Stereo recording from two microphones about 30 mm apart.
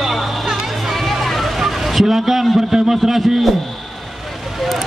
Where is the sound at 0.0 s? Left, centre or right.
Centre.